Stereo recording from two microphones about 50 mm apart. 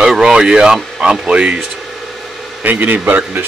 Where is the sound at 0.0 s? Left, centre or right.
Centre.